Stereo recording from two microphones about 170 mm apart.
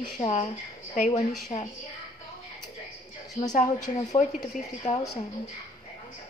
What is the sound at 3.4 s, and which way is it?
Speech, 40° left (ahead or behind).